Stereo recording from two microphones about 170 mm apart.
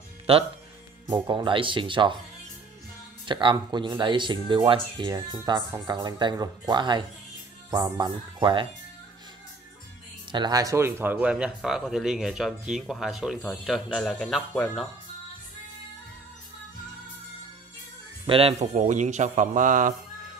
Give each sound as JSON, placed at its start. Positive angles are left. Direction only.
{"t": 0.3, "sound": "speech", "side_deg": -35}
{"t": 3.3, "sound": "speech", "side_deg": -30}
{"t": 10.3, "sound": "speech", "side_deg": -25}
{"t": 18.2, "sound": "speech", "side_deg": -35}